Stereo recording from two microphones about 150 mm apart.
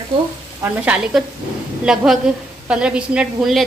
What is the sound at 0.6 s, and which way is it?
A woman's voice, 5° right (ahead or behind).